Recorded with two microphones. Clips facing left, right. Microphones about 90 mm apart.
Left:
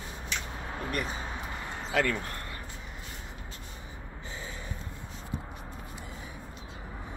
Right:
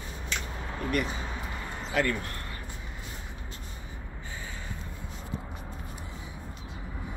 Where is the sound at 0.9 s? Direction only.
35° left (ahead or behind).